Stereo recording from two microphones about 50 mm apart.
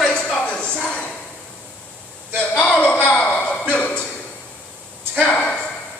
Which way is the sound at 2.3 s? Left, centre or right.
Left.